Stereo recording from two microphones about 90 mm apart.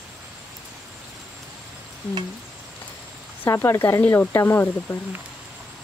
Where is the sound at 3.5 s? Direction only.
30° left (ahead or behind).